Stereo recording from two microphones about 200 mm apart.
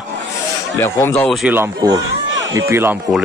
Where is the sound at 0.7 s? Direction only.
10° left (ahead or behind).